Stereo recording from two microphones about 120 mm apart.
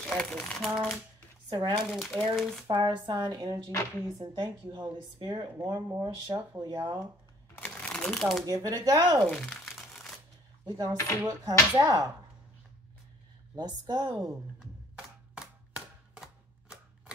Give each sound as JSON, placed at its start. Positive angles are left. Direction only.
{"t": 0.0, "sound": "speech", "side_deg": 5}
{"t": 1.5, "sound": "a woman's voice", "side_deg": -40}
{"t": 1.9, "sound": "speech", "side_deg": 0}
{"t": 2.7, "sound": "a woman's voice", "side_deg": -35}
{"t": 7.5, "sound": "shuffling cards", "side_deg": 10}
{"t": 8.5, "sound": "a woman's voice", "side_deg": -30}
{"t": 9.2, "sound": "crumpling", "side_deg": 5}
{"t": 10.6, "sound": "a woman's voice", "side_deg": -35}
{"t": 13.6, "sound": "a woman's voice", "side_deg": -35}
{"t": 15.3, "sound": "a sound", "side_deg": -5}